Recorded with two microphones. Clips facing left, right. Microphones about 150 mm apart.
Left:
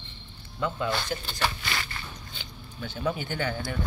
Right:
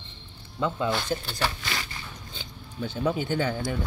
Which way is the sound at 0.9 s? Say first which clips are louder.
Right 3 dB; 5° right (ahead or behind).